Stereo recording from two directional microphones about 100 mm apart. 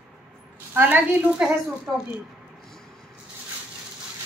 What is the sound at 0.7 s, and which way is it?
Speech, 15° right (ahead or behind).